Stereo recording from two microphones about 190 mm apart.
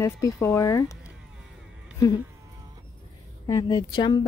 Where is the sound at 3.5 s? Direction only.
20° left (ahead or behind).